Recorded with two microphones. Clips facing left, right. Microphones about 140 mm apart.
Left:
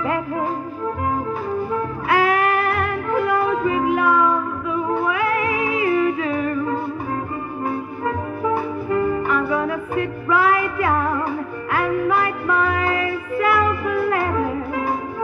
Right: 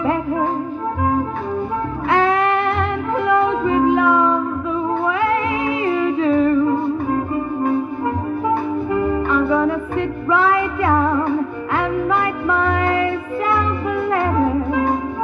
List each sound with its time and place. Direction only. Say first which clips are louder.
2.0 s music: right 2 dB; 25° right (ahead or behind)
5.9 s humming: right 3 dB; 25° right (ahead or behind)
9.0 s music: right 3 dB; 25° right (ahead or behind)